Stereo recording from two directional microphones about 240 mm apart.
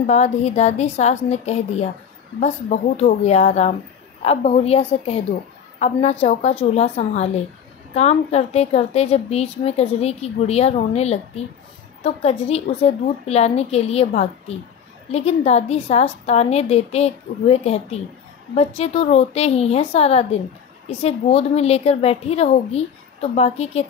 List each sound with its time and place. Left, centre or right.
0.0 s a woman's voice: left